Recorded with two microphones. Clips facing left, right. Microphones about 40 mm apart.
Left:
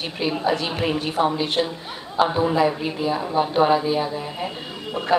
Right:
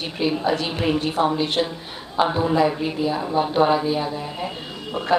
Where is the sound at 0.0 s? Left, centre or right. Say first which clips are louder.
Right 1 dB; centre.